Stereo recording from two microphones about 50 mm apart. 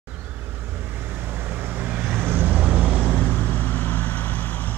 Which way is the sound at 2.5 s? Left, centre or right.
Centre.